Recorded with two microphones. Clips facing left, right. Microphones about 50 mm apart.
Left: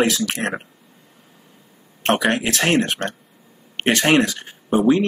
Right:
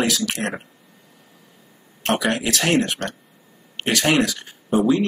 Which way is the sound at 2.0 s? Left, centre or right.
Left.